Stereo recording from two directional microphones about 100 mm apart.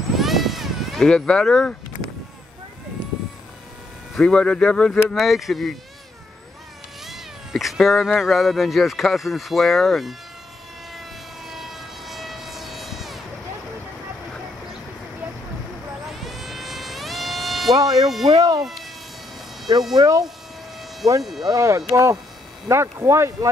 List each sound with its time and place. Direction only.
0.2 s a sound: centre (ahead or behind)
4.1 s speech: 10° left (ahead or behind)
7.1 s speech: centre (ahead or behind)
11.4 s vehicle: 5° right (ahead or behind)
16.1 s a sound: centre (ahead or behind)
17.7 s speech: 35° right (ahead or behind)
18.6 s speech: centre (ahead or behind)
19.9 s speech: 35° right (ahead or behind)
21.2 s speech: centre (ahead or behind)
21.5 s speech: 30° right (ahead or behind)